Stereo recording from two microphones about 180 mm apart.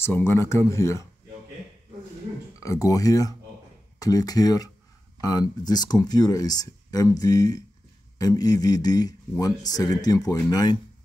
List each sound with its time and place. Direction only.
0.0 s speech: 15° left (ahead or behind)
2.6 s speech: 20° left (ahead or behind)